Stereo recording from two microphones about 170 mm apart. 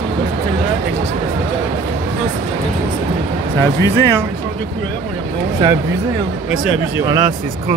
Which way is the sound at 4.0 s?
15° right (ahead or behind).